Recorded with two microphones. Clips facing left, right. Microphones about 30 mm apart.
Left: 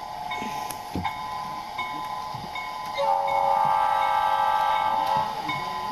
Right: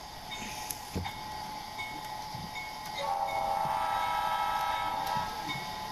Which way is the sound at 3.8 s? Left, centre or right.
Left.